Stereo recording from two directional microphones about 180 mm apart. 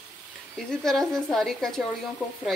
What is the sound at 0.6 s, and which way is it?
A woman's voice, centre (ahead or behind).